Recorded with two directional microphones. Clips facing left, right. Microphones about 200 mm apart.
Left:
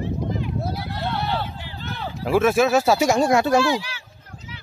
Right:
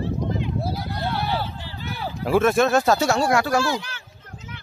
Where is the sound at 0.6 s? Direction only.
5° right (ahead or behind).